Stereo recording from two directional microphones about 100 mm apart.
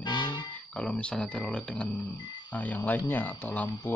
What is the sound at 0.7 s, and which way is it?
Speech, 10° left (ahead or behind).